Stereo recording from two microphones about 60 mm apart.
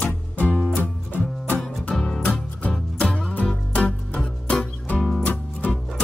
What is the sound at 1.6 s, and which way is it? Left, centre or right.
Music, centre.